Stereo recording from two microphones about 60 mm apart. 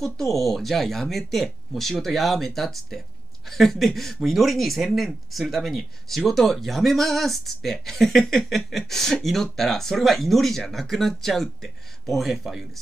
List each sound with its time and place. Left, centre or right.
0.0 s speech: centre